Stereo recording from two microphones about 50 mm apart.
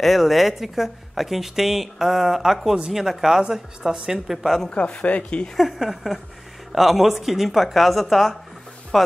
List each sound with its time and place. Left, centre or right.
0.0 s a woman's voice: centre
4.6 s speech: left
5.6 s a woman's voice: centre